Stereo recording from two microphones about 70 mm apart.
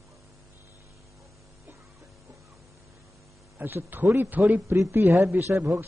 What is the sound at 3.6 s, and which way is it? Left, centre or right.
Speech, right.